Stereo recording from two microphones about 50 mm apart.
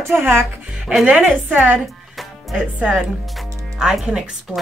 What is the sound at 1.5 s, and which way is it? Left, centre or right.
Speech, right.